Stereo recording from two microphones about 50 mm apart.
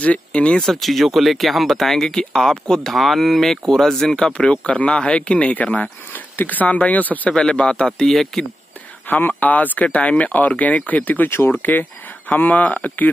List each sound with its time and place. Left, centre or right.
0.0 s speech: left
0.6 s speech: centre
4.4 s speech: left
7.2 s speech: centre
8.1 s speech: centre
9.0 s speech: left
11.2 s speech: left
12.3 s speech: left